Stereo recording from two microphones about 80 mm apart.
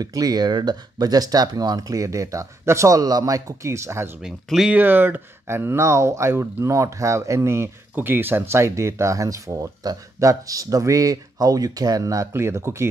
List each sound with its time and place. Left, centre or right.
0.0 s speech: right
4.6 s speech: right
12.3 s speech: right